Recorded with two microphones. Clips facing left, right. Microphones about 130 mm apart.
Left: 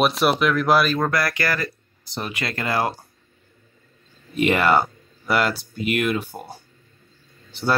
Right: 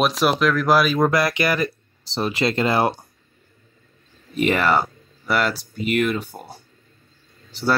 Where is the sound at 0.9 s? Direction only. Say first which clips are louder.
Right 4 dB; 20° right (ahead or behind).